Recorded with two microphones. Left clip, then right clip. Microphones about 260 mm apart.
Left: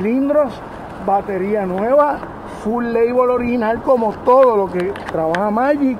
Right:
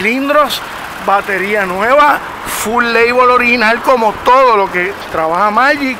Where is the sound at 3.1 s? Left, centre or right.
Right.